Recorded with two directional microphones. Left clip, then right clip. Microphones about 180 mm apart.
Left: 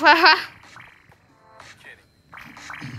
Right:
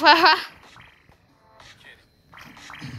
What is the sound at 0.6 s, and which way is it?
Babbling, 40° left (ahead or behind).